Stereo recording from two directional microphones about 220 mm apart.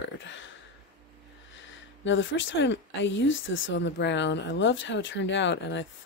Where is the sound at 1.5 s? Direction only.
55° left (ahead or behind).